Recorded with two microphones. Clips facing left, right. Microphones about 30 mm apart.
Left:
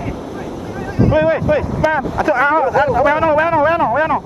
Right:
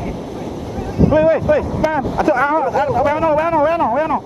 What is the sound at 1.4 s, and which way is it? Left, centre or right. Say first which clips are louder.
Speech: even; centre.